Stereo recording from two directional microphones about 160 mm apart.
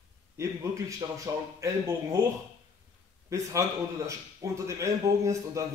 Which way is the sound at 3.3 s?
20° right (ahead or behind).